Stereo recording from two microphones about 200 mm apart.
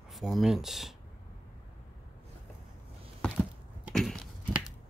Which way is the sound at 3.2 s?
5° left (ahead or behind).